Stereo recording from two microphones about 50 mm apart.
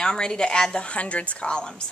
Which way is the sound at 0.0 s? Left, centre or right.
Centre.